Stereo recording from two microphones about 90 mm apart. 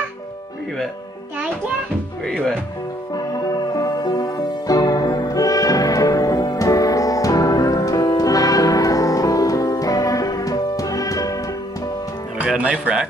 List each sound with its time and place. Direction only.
2.2 s speech: 10° left (ahead or behind)
3.7 s music: 45° left (ahead or behind)